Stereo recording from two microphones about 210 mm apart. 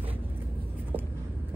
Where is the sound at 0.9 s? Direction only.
25° right (ahead or behind).